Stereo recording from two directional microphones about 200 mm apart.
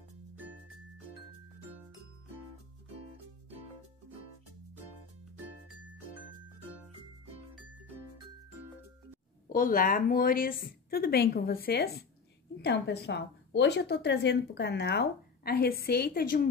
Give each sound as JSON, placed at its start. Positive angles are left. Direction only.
{"t": 9.5, "sound": "a woman's voice", "side_deg": 45}